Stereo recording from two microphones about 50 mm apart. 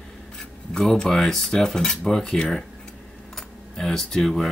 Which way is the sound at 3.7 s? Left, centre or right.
Centre.